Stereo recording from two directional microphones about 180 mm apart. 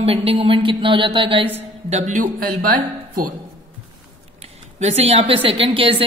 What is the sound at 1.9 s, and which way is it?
Speech, 45° right (ahead or behind).